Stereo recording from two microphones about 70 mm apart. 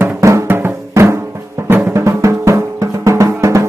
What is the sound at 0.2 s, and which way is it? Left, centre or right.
Music, right.